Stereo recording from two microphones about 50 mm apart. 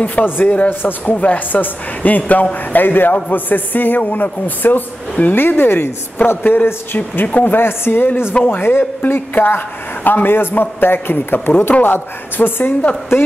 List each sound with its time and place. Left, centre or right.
0.2 s speech: left
0.7 s speech: left
1.1 s a man's voice: left
13.1 s a man's voice: left